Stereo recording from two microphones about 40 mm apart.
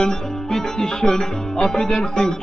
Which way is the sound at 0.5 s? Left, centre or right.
Centre.